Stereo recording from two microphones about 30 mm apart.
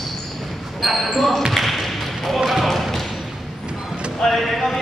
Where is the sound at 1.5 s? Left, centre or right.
Centre.